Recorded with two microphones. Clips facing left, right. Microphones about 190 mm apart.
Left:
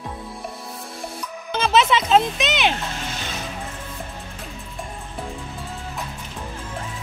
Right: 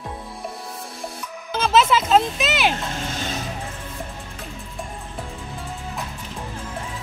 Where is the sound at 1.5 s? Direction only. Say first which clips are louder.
Right 1 dB; centre (ahead or behind).